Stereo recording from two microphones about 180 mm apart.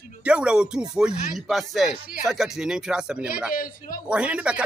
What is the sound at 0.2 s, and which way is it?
Speech, 5° right (ahead or behind).